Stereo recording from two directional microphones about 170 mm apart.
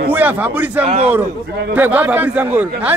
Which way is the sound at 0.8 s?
40° right (ahead or behind).